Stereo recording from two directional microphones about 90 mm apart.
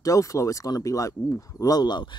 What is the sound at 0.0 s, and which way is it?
Speech, 40° left (ahead or behind).